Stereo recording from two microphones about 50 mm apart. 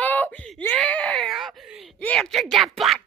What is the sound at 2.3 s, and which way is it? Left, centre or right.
Speech, centre.